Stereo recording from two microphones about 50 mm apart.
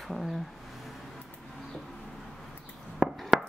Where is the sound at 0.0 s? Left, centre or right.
Centre.